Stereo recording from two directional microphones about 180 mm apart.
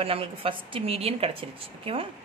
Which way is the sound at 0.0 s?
30° right (ahead or behind).